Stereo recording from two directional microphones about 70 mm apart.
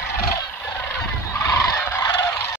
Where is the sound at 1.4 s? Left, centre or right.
Left.